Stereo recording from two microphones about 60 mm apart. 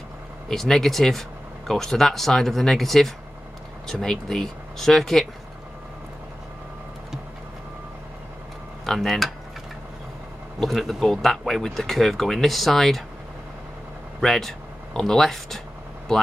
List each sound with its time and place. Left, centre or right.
0.5 s speech: centre
8.8 s speech: centre
10.6 s speech: centre
14.2 s speech: centre